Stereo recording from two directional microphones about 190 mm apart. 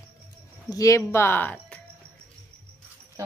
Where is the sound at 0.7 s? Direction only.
15° left (ahead or behind).